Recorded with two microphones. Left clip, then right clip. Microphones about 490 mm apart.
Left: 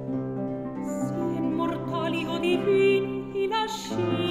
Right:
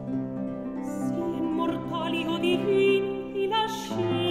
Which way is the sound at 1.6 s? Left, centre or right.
Centre.